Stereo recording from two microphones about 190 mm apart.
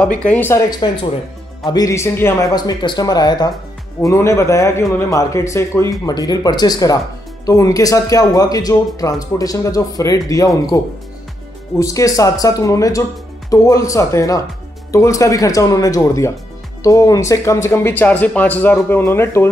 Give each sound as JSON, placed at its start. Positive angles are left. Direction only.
{"t": 0.0, "sound": "a man's voice", "side_deg": 5}
{"t": 0.8, "sound": "a man's voice", "side_deg": 25}
{"t": 11.8, "sound": "a man's voice", "side_deg": 15}